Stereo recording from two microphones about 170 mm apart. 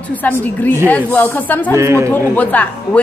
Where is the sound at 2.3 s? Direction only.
10° left (ahead or behind).